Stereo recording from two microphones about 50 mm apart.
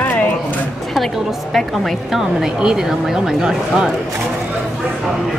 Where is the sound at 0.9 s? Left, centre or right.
Centre.